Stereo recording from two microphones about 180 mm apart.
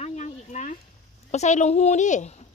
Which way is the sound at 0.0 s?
40° left (ahead or behind).